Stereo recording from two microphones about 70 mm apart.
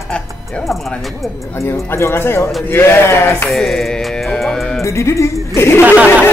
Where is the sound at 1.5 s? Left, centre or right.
Left.